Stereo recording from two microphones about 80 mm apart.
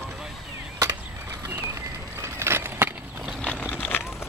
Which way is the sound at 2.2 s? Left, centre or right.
Right.